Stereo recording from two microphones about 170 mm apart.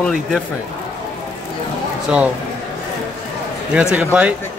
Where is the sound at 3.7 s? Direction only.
5° right (ahead or behind).